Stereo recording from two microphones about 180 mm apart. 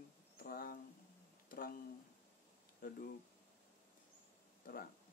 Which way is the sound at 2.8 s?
50° left (ahead or behind).